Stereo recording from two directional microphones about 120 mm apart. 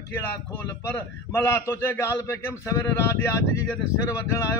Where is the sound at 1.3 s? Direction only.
25° left (ahead or behind).